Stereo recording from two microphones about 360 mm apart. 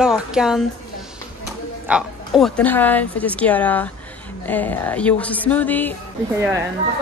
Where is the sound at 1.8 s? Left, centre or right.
Centre.